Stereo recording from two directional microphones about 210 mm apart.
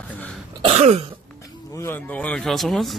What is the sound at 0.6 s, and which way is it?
Throat clearing, 30° right (ahead or behind).